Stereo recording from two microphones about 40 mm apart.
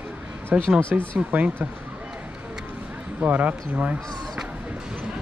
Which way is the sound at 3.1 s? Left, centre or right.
Right.